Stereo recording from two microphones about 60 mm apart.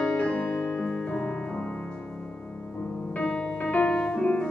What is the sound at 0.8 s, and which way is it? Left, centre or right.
Music, centre.